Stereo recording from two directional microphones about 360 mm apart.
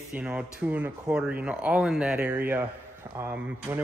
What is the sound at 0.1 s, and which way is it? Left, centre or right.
Speech, centre.